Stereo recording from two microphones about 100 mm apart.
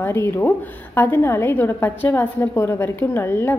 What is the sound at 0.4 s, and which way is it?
A woman's voice, 20° left (ahead or behind).